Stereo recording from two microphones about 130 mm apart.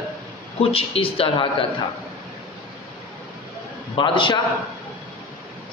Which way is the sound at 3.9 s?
40° left (ahead or behind).